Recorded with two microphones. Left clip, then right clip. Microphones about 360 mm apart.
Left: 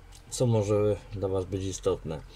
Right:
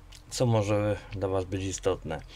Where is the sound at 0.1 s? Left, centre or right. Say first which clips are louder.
Right 1 dB; right.